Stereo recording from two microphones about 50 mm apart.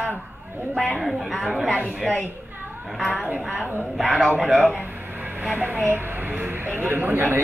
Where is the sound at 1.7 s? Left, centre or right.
Left.